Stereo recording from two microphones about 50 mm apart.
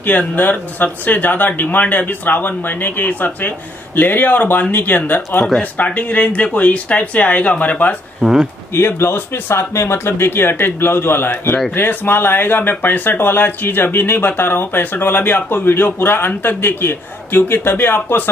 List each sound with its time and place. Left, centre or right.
0.4 s speech: left
8.2 s speech: centre
8.7 s speech: left